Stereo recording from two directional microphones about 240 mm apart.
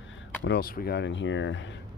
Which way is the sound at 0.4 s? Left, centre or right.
Left.